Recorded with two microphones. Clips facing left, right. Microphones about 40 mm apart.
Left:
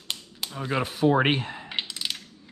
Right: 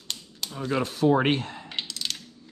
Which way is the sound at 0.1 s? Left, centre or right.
Centre.